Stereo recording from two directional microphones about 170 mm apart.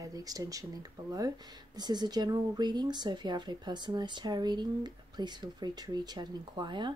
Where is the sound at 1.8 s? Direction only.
25° right (ahead or behind).